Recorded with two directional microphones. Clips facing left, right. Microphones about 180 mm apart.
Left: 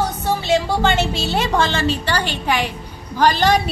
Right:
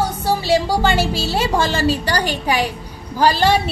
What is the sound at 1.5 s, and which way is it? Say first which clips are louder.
A woman's voice: right 2 dB; 35° right (ahead or behind).